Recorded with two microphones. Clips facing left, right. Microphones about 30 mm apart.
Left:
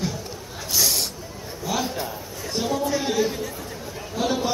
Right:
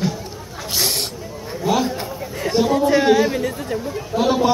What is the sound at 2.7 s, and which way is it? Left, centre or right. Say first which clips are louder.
Chatter: right 9 dB; right.